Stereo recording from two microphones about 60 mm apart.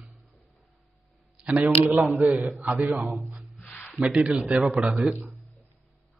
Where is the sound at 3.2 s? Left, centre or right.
Centre.